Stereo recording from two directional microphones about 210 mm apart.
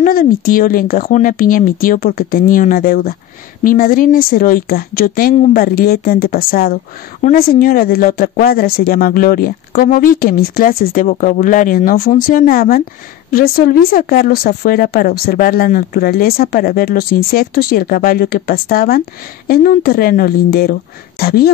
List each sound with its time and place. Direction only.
0.0 s a woman's voice: 40° left (ahead or behind)